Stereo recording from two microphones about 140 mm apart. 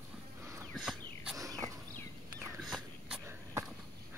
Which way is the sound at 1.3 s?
25° right (ahead or behind).